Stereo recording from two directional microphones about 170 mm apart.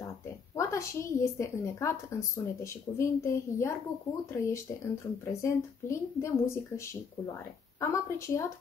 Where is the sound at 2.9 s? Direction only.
15° left (ahead or behind).